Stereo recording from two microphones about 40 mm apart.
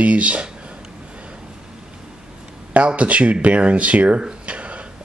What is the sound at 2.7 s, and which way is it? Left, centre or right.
Speech, right.